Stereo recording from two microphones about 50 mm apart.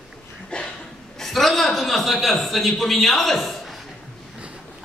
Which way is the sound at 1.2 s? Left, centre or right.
Centre.